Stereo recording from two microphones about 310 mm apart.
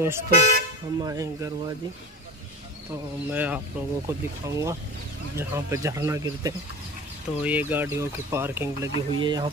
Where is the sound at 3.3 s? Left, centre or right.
Centre.